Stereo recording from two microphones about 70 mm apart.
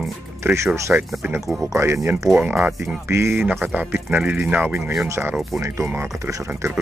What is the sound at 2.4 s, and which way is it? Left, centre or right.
Speech, centre.